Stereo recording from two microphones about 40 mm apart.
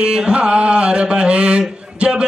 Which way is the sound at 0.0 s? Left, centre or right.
Right.